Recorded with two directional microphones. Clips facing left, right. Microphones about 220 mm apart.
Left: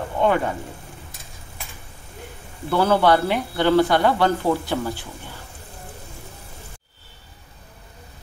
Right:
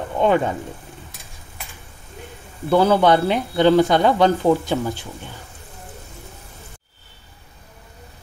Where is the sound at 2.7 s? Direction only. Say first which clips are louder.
Right 3 dB; 15° right (ahead or behind).